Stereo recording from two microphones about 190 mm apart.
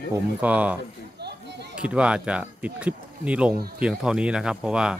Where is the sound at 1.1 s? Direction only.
60° right (ahead or behind).